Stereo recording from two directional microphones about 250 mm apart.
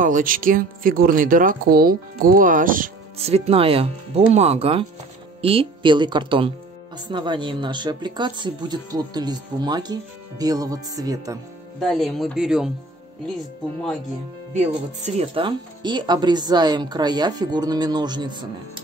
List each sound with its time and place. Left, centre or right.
0.0 s speech: right; by 11.3 s centre
11.8 s speech: centre
15.0 s speech: right